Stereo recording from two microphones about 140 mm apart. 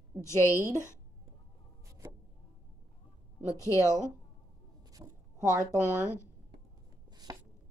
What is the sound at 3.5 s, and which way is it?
Speech, 20° left (ahead or behind).